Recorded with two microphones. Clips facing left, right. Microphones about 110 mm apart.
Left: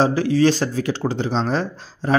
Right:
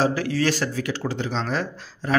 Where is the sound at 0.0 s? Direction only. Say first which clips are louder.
Left 5 dB; 25° left (ahead or behind).